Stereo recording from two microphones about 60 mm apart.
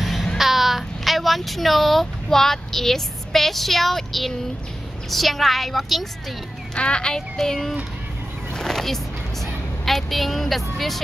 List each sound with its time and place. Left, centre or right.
0.0 s a sound: centre
0.4 s a woman's voice: centre
6.7 s a child's voice: centre
7.2 s a woman's voice: centre
8.5 s vehicle: centre